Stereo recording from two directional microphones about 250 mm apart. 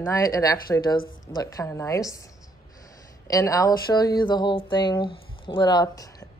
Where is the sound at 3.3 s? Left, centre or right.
Centre.